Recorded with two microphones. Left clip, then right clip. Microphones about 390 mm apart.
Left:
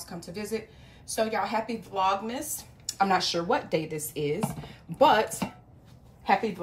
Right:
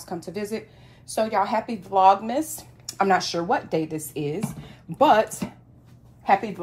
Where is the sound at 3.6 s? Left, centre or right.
Centre.